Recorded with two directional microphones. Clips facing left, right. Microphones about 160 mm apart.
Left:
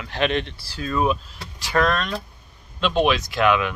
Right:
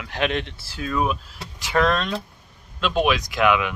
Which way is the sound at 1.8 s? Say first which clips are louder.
Right 1 dB; 20° right (ahead or behind).